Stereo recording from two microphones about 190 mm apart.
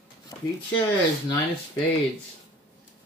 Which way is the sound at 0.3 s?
20° left (ahead or behind).